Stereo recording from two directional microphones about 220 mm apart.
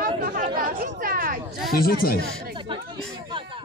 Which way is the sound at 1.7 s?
45° left (ahead or behind).